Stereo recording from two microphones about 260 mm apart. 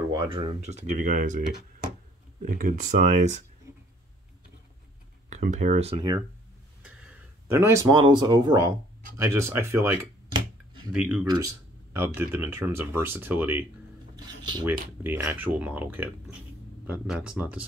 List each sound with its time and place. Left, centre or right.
0.1 s speech: centre
2.4 s speech: right
5.3 s speech: right
7.4 s cutlery: centre
9.1 s speech: centre
10.9 s speech: centre
11.2 s cutlery: centre